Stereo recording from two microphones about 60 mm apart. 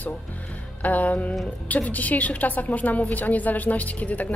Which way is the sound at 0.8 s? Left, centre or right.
Left.